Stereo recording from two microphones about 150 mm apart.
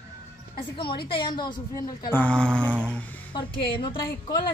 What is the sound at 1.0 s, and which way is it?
Speech, 35° left (ahead or behind).